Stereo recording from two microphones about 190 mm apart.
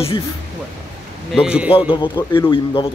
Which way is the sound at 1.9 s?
25° left (ahead or behind).